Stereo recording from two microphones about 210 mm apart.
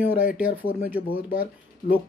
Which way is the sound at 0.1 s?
40° left (ahead or behind).